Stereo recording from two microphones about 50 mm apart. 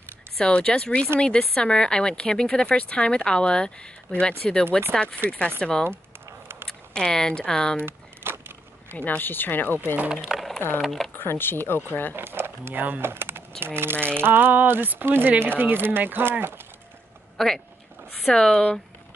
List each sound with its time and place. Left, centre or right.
0.4 s speech: centre
5.6 s speech: centre
5.9 s a sound: right
6.9 s speech: centre
7.8 s a sound: right
8.9 s speech: left
10.1 s a sound: centre
10.8 s speech: centre
11.1 s speech: left
11.9 s speech: left
12.2 s a sound: right
13.0 s speech: right
17.4 s speech: centre